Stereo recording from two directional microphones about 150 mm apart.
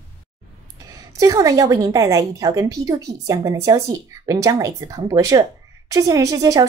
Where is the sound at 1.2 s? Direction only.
20° right (ahead or behind).